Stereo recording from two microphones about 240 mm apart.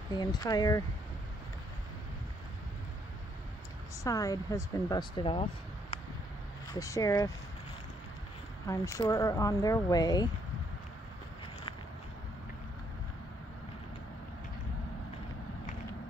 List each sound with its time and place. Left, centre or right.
0.1 s speech: centre
4.0 s speech: centre
8.6 s speech: centre